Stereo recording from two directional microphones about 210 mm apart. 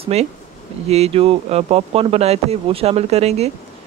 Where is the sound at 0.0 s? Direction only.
30° right (ahead or behind).